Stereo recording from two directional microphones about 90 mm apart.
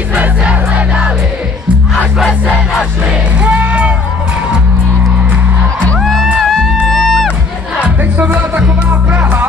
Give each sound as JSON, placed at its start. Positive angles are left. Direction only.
{"t": 0.1, "sound": "crowd", "side_deg": -15}
{"t": 2.4, "sound": "music", "side_deg": -5}
{"t": 5.9, "sound": "music", "side_deg": 0}
{"t": 7.8, "sound": "music", "side_deg": -15}